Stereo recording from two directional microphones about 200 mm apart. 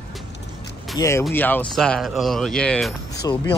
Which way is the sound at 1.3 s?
10° left (ahead or behind).